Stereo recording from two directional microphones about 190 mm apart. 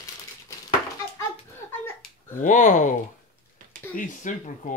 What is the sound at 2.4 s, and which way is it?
Speech, 40° left (ahead or behind).